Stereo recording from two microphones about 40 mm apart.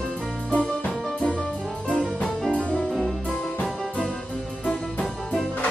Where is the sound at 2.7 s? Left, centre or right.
Left.